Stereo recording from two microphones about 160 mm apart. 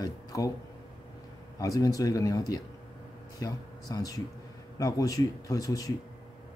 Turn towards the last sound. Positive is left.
turn(degrees=20)  # may be behind; listen again after turning